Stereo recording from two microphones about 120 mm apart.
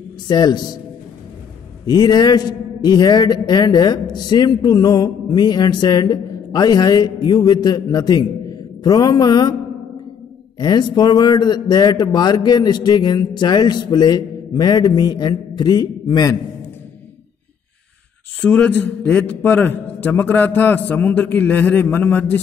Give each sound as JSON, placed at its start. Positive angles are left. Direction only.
{"t": 0.3, "sound": "a man's voice", "side_deg": 35}
{"t": 1.9, "sound": "a man's voice", "side_deg": 35}
{"t": 10.6, "sound": "a man's voice", "side_deg": 35}
{"t": 18.4, "sound": "a man's voice", "side_deg": 10}